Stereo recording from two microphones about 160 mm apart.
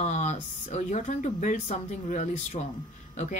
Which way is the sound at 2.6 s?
40° left (ahead or behind).